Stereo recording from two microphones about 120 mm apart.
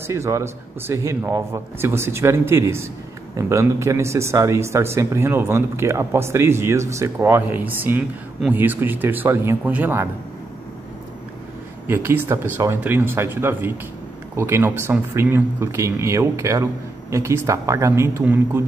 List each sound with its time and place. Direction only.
0.0 s speech: 25° right (ahead or behind)
11.9 s speech: 15° right (ahead or behind)